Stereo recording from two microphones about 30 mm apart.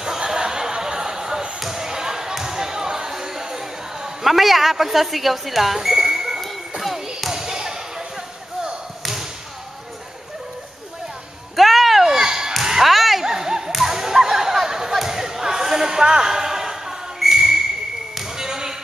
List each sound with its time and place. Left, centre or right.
0.2 s a sound: right
1.7 s basketball bounce: centre
4.3 s speech: centre
7.2 s basketball bounce: centre
9.0 s a sound: centre
11.5 s a sound: centre
12.8 s whip: centre
13.2 s whip: centre
13.7 s whip: centre
13.9 s whip: centre
14.7 s a sound: centre
18.2 s basketball bounce: centre